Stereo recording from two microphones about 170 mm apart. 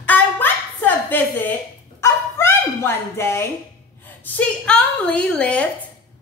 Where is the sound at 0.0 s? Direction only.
10° left (ahead or behind).